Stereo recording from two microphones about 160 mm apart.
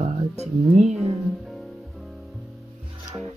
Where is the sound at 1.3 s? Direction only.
Centre (ahead or behind).